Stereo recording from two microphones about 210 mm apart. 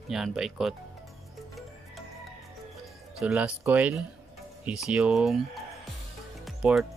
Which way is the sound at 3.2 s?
5° right (ahead or behind).